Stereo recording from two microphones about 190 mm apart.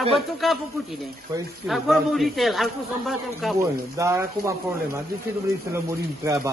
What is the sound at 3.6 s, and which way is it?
Speech, 15° right (ahead or behind).